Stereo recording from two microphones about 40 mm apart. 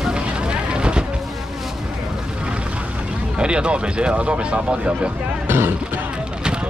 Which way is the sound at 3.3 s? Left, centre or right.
Right.